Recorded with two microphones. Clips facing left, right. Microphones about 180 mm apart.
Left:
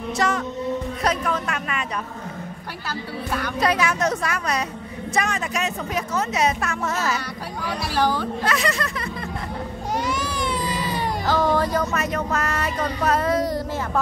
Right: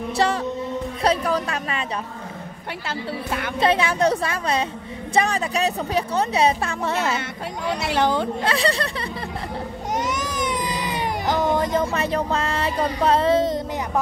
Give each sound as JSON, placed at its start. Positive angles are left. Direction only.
{"t": 0.2, "sound": "speech", "side_deg": -30}
{"t": 2.9, "sound": "speech", "side_deg": -25}
{"t": 9.9, "sound": "speech", "side_deg": -20}